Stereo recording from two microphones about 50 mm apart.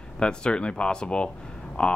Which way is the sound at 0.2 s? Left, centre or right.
Centre.